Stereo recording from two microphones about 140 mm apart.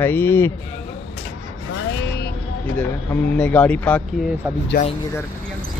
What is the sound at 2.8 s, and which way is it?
Speech, 15° left (ahead or behind).